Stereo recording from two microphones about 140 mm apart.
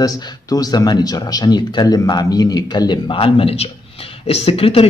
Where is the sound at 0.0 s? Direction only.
25° left (ahead or behind).